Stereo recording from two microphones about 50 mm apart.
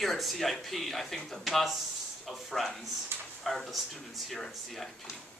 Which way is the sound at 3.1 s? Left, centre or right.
Right.